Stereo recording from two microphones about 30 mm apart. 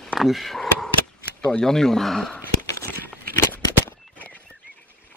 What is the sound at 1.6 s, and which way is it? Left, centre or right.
Speech, centre.